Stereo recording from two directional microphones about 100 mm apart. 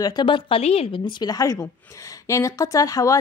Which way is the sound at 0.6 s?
90° left.